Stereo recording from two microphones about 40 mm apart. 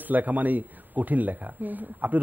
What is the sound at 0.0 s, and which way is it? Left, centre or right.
Speech, right.